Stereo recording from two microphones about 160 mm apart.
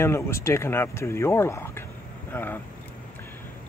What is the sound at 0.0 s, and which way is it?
Speech, 15° left (ahead or behind).